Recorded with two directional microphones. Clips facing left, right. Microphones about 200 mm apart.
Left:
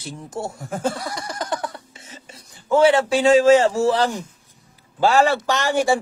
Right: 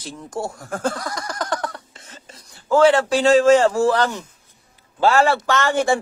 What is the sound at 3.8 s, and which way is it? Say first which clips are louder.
Speech: right 1 dB; 30° left (ahead or behind).